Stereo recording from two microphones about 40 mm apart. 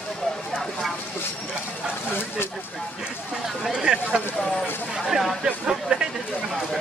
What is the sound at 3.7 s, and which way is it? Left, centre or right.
Speech, centre.